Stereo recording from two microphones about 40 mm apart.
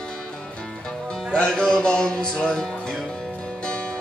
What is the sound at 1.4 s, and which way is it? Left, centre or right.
Music, centre.